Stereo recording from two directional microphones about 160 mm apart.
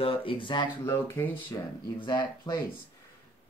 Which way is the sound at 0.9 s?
15° left (ahead or behind).